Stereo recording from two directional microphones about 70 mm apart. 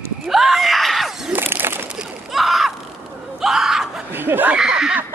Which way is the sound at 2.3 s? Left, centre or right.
Centre.